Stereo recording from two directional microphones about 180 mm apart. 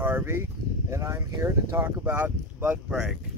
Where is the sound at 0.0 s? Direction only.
10° right (ahead or behind).